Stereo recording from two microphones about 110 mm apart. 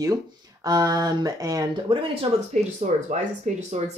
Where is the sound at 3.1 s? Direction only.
90° right.